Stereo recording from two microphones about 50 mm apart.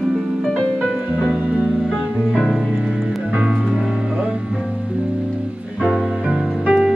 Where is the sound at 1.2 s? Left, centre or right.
Centre.